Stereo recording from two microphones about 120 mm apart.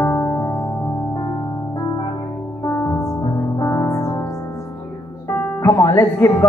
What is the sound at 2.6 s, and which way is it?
Music, 20° left (ahead or behind).